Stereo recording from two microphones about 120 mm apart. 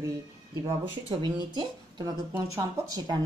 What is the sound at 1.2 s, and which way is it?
Speech, 35° right (ahead or behind).